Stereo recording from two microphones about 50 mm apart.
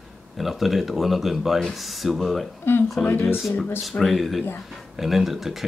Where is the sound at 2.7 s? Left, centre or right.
Left.